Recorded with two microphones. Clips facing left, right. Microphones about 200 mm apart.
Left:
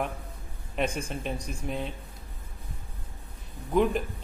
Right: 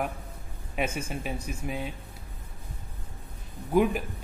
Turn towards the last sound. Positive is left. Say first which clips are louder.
# right 1 dB
turn(degrees=-5)  # may be behind; listen again after turning